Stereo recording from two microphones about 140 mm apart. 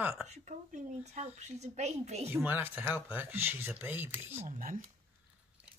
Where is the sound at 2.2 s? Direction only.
15° right (ahead or behind).